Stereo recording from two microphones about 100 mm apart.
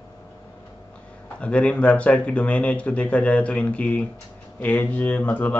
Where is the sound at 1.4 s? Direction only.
10° left (ahead or behind).